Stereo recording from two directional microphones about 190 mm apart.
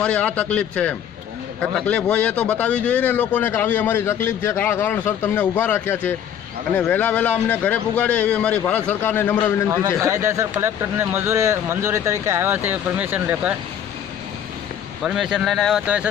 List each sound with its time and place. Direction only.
0.0 s a man's voice: 5° left (ahead or behind)
10.0 s speech: 15° right (ahead or behind)
15.0 s speech: 5° right (ahead or behind)